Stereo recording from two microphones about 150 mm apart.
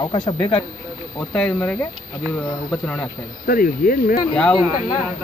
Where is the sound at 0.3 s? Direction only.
35° left (ahead or behind).